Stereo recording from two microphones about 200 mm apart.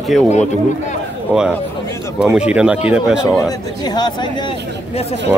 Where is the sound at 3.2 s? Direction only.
20° left (ahead or behind).